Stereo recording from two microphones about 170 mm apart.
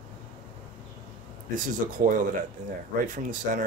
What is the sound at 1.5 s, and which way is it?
Speech, 50° right (ahead or behind).